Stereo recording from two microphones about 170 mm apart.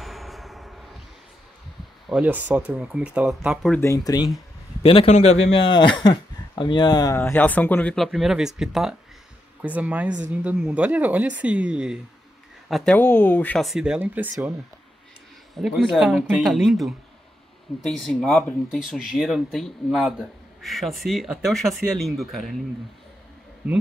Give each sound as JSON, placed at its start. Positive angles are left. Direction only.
{"t": 0.0, "sound": "a sound", "side_deg": 0}
{"t": 2.0, "sound": "speech", "side_deg": -5}
{"t": 3.8, "sound": "speech", "side_deg": 20}
{"t": 4.8, "sound": "speech", "side_deg": 35}
{"t": 15.5, "sound": "speech", "side_deg": 0}